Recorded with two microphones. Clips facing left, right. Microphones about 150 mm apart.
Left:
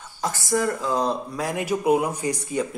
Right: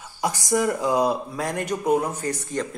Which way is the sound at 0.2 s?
15° right (ahead or behind).